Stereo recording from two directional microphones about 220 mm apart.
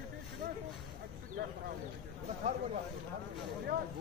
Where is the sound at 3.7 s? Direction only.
40° right (ahead or behind).